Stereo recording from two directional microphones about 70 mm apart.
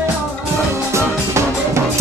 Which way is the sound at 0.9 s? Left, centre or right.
Right.